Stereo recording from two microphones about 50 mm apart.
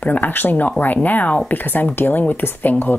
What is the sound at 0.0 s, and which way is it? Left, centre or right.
Speech, left.